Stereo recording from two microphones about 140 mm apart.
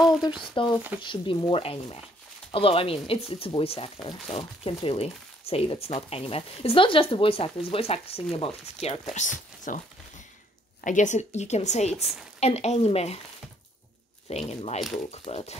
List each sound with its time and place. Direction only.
0.6 s stir: 35° left (ahead or behind)
2.5 s speech: 40° left (ahead or behind)
9.1 s speech: 65° left (ahead or behind)
10.8 s speech: 65° left (ahead or behind); by 13.2 s 45° left (ahead or behind)
14.3 s speech: 50° left (ahead or behind)